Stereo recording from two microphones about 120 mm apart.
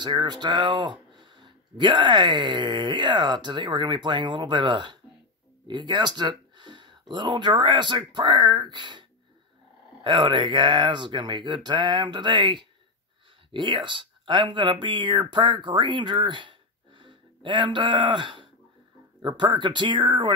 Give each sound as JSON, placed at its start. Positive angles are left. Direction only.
{"t": 0.0, "sound": "speech", "side_deg": -40}
{"t": 10.0, "sound": "speech", "side_deg": -40}